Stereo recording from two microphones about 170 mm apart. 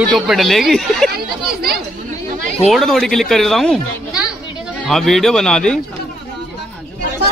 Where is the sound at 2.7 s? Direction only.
Centre (ahead or behind).